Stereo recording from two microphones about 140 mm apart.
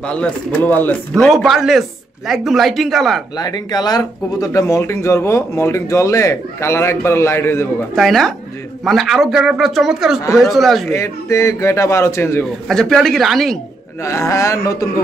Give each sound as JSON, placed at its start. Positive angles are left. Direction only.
{"t": 0.0, "sound": "speech", "side_deg": 5}
{"t": 1.2, "sound": "speech", "side_deg": 0}
{"t": 3.3, "sound": "speech", "side_deg": 30}
{"t": 7.9, "sound": "speech", "side_deg": 0}
{"t": 10.9, "sound": "speech", "side_deg": 20}
{"t": 12.6, "sound": "speech", "side_deg": 5}
{"t": 14.0, "sound": "speech", "side_deg": 20}